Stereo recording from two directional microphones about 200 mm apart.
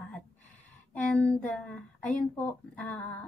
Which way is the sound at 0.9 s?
5° left (ahead or behind).